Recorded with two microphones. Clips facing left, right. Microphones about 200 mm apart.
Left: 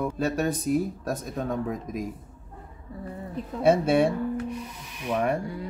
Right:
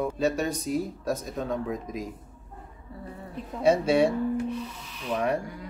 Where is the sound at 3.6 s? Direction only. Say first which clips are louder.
Left 1 dB; 55° left (ahead or behind).